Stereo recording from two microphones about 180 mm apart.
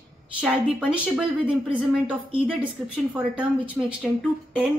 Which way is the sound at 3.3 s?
5° right (ahead or behind).